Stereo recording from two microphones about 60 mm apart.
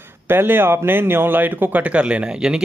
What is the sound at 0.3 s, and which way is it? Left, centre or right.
Speech, right.